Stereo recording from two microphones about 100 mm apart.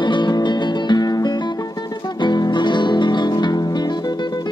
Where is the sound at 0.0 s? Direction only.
50° left (ahead or behind).